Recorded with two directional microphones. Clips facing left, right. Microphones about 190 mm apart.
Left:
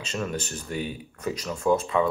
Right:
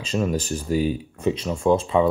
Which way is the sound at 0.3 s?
35° right (ahead or behind).